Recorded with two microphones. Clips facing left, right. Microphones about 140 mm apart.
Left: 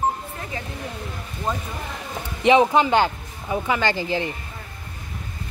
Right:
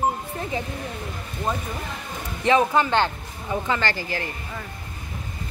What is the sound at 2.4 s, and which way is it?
Speech, 20° left (ahead or behind).